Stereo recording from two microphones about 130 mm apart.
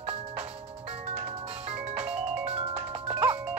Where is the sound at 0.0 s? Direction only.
50° right (ahead or behind).